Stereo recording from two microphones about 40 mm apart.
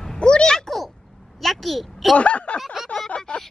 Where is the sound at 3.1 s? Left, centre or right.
Left.